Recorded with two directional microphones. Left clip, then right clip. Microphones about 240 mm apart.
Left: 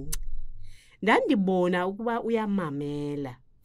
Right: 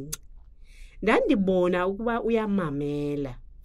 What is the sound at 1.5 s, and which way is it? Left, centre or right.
Speech, left.